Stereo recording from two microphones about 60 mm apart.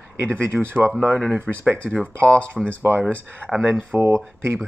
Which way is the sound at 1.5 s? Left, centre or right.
Centre.